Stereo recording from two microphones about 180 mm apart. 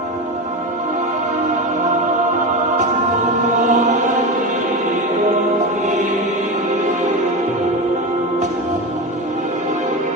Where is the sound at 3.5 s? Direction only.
45° right (ahead or behind).